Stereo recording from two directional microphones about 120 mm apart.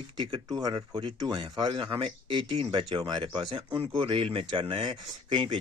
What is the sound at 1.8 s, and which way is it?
Speech, 50° right (ahead or behind).